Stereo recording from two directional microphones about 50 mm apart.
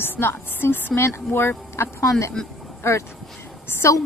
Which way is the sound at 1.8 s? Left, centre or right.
Left.